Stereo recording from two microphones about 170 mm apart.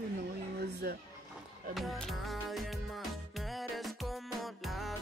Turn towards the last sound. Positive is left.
turn(degrees=0)  # may be behind; listen again after turning